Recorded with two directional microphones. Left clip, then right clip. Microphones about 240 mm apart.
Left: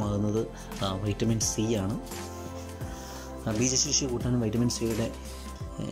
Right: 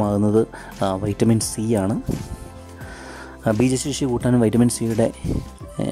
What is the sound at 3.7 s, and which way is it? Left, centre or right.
Speech, right.